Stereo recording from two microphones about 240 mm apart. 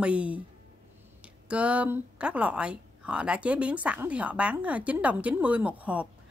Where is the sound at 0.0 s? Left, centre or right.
Centre.